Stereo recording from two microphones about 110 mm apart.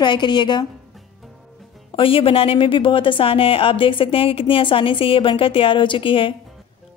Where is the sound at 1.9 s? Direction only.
55° left (ahead or behind).